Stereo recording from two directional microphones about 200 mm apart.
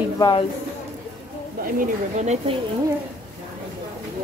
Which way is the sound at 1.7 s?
35° right (ahead or behind).